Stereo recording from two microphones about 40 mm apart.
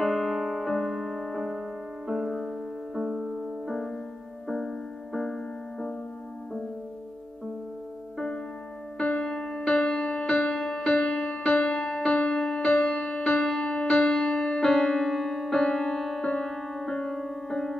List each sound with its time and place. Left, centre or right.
0.0 s keyboard: centre
0.3 s keyboard: centre
2.0 s music: centre
3.6 s music: centre
5.2 s music: centre
9.2 s music: centre
14.1 s music: centre
15.6 s music: centre